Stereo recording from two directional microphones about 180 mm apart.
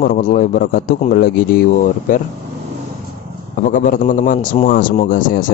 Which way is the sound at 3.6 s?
50° left (ahead or behind).